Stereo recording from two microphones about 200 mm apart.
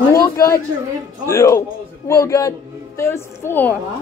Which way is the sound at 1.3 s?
15° left (ahead or behind).